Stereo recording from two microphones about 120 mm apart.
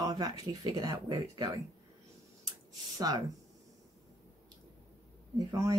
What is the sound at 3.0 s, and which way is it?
Speech, 30° right (ahead or behind).